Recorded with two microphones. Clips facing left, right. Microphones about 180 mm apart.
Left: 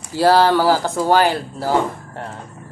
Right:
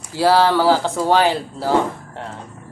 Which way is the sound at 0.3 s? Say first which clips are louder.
Even; 10° left (ahead or behind).